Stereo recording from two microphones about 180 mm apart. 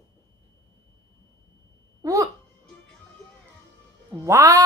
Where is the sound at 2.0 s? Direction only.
20° right (ahead or behind).